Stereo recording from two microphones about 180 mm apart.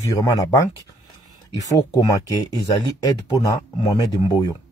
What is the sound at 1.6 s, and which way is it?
Speech, 20° left (ahead or behind).